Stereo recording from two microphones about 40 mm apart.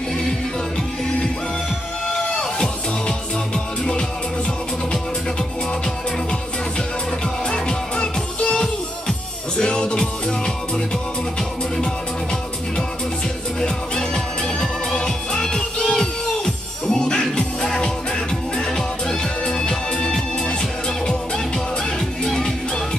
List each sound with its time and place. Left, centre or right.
2.3 s music: centre
7.4 s music: centre
13.6 s music: centre
22.2 s music: centre